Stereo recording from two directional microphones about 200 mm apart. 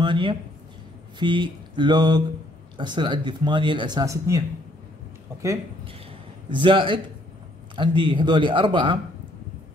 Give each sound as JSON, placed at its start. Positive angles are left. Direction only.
{"t": 0.0, "sound": "speech", "side_deg": -25}
{"t": 6.5, "sound": "speech", "side_deg": -25}